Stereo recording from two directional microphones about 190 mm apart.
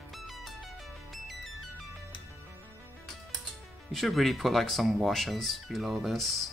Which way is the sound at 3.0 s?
Centre (ahead or behind).